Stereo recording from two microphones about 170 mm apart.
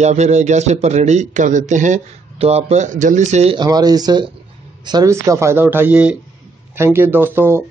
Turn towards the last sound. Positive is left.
turn(degrees=-15)  # may be behind; listen again after turning